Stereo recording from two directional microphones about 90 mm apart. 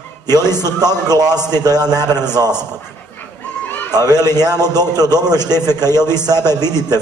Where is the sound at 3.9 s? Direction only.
45° right (ahead or behind).